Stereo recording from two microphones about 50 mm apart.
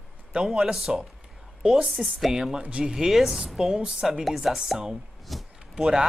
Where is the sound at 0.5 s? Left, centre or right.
Centre.